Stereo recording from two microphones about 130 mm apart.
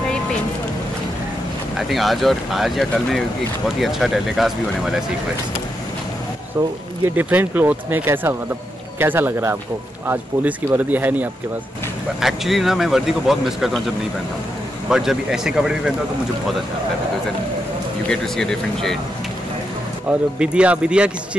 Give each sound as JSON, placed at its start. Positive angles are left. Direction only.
{"t": 1.8, "sound": "speech", "side_deg": 0}
{"t": 7.2, "sound": "speech", "side_deg": -15}
{"t": 12.2, "sound": "speech", "side_deg": 0}
{"t": 18.0, "sound": "speech", "side_deg": 5}
{"t": 20.1, "sound": "speech", "side_deg": -10}